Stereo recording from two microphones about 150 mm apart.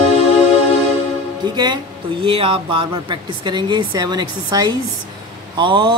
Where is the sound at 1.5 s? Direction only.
30° right (ahead or behind).